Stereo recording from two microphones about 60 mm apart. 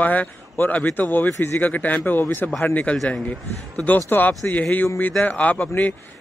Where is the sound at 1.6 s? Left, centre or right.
Left.